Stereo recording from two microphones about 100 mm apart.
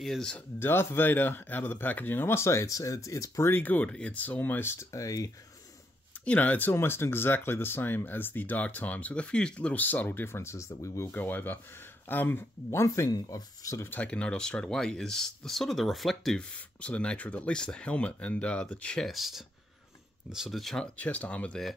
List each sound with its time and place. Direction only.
0.0 s speech: 5° left (ahead or behind)
0.6 s speech: 25° left (ahead or behind)
6.1 s speech: 15° left (ahead or behind); by 11.1 s 30° left (ahead or behind)
11.1 s speech: 20° left (ahead or behind); by 13.8 s 35° left (ahead or behind)
13.8 s speech: 15° left (ahead or behind)
16.4 s speech: 15° left (ahead or behind)